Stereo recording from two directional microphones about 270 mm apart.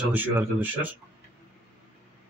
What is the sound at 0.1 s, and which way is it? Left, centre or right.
Speech, centre.